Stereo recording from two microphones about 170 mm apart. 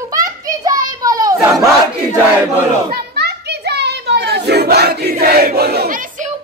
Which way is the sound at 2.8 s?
70° right (ahead or behind).